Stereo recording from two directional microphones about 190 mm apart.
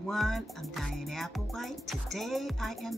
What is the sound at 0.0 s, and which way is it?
Music, centre (ahead or behind).